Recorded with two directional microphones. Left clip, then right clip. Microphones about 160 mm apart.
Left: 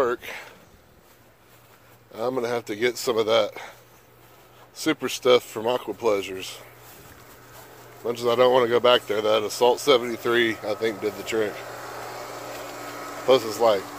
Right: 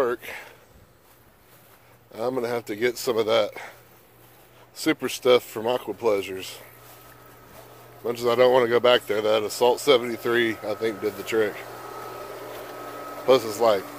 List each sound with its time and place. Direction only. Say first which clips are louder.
0.0 s speech: left 1 dB; 5° right (ahead or behind)
2.1 s speech: left 1 dB; 10° right (ahead or behind)
4.7 s speech: even; 15° right (ahead or behind)
8.0 s speech: even; 20° right (ahead or behind)
11.6 s a sound: left 1 dB; 15° left (ahead or behind)
12.7 s a sound: left 1 dB; 30° left (ahead or behind)
13.3 s speech: even; 15° right (ahead or behind)